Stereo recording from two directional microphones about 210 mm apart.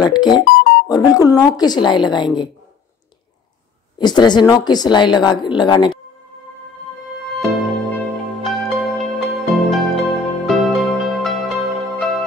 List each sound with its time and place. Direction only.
0.0 s speech: 20° left (ahead or behind)
4.0 s speech: 20° left (ahead or behind)
7.2 s music: centre (ahead or behind)